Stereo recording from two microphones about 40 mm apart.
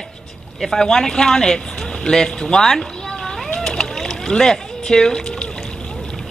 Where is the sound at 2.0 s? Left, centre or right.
Centre.